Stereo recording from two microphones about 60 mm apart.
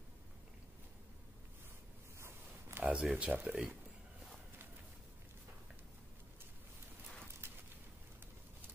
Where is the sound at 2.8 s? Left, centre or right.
Centre.